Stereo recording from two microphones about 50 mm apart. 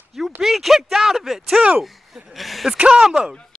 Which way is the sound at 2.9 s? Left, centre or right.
Centre.